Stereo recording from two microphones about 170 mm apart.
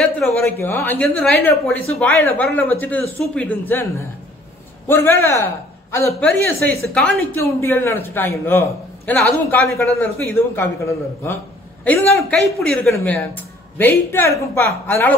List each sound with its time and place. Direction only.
0.4 s a woman's voice: 15° left (ahead or behind)
4.8 s a man's voice: 10° left (ahead or behind)